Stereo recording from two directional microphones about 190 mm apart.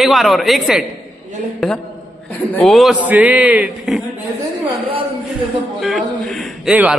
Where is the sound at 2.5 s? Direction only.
Centre (ahead or behind).